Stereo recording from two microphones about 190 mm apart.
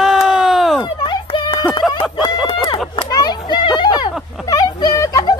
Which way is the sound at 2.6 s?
25° left (ahead or behind).